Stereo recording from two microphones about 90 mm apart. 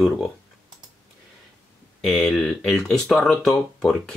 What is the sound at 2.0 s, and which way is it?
Speech, centre (ahead or behind).